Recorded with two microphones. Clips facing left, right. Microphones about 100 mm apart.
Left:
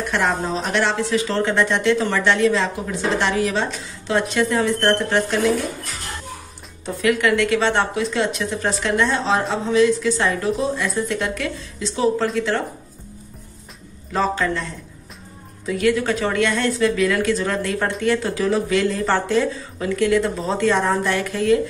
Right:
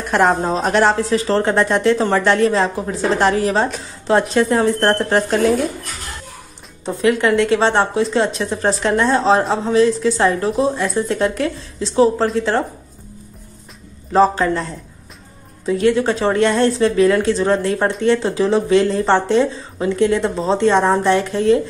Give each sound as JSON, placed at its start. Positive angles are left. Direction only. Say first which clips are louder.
{"t": 0.0, "sound": "speech", "louder": "right 6 dB", "side_deg": -45}
{"t": 6.9, "sound": "speech", "louder": "right 3 dB", "side_deg": -30}
{"t": 14.1, "sound": "speech", "louder": "right 7 dB", "side_deg": -35}